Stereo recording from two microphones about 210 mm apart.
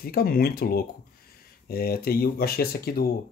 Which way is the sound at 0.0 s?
45° left (ahead or behind).